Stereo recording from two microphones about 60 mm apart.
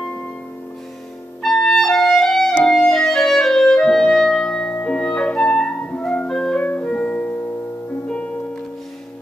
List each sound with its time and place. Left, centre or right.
1.4 s music: centre
2.6 s clarinet: centre
5.9 s music: centre
6.6 s music: left